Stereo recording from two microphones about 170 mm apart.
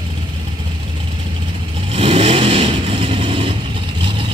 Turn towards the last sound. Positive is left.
turn(degrees=-30)  # may be behind; listen again after turning